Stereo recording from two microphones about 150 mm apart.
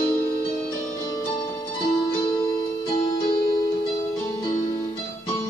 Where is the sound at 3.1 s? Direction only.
30° left (ahead or behind).